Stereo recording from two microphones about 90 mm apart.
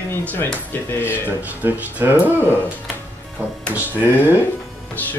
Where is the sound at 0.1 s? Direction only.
20° left (ahead or behind).